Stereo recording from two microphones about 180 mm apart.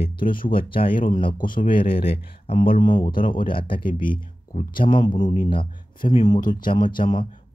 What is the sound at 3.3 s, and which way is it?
Speech, 30° left (ahead or behind).